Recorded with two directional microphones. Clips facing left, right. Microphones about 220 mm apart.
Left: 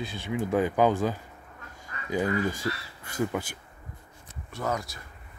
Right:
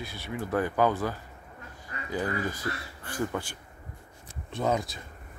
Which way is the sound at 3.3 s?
10° left (ahead or behind).